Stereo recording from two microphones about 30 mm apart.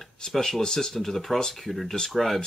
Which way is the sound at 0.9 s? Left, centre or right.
Centre.